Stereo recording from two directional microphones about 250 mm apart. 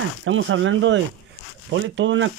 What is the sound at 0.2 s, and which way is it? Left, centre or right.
Speech, right.